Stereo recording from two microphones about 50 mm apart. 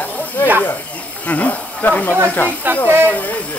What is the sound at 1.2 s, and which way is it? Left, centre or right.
Speech, left.